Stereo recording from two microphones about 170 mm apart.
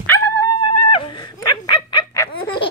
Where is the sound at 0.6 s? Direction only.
30° left (ahead or behind).